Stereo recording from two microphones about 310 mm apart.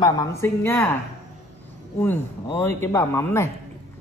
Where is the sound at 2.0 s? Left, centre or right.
Centre.